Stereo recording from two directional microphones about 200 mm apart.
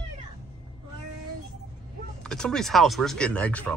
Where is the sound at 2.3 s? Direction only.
5° left (ahead or behind).